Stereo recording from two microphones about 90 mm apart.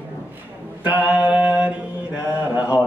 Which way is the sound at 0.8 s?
15° right (ahead or behind).